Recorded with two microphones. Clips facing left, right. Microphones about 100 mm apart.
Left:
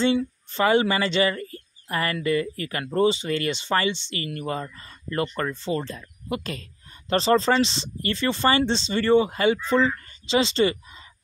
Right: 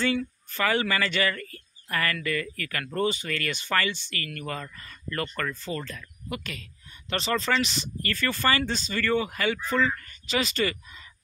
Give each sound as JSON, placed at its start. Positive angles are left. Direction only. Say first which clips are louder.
{"t": 0.0, "sound": "speech", "louder": "left 5 dB", "side_deg": 25}